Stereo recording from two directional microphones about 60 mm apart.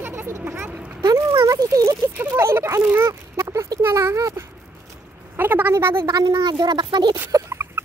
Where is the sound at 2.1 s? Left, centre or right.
Right.